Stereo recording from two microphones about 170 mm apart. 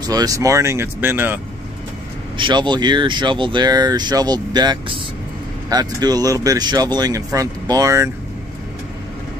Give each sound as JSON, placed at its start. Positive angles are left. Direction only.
{"t": 0.0, "sound": "speech", "side_deg": -20}
{"t": 2.3, "sound": "speech", "side_deg": -30}